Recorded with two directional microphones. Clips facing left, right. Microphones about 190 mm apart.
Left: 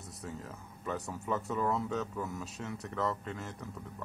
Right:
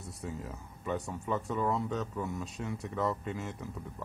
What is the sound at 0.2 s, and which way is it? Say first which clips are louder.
Speech: right 3 dB; centre (ahead or behind).